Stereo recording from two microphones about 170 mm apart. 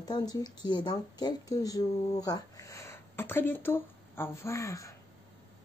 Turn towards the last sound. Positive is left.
turn(degrees=20)  # may be behind; listen again after turning